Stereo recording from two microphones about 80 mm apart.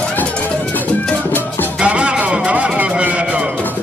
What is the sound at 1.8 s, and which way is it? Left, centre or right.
Music, centre.